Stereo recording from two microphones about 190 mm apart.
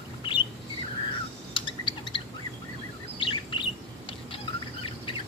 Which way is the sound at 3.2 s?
25° left (ahead or behind).